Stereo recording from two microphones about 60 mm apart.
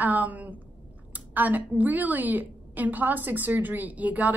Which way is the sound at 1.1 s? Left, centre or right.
Right.